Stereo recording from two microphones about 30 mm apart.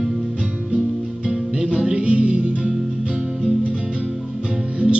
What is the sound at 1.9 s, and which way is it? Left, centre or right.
Music, right.